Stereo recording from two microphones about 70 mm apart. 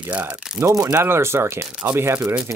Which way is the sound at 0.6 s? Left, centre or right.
Right.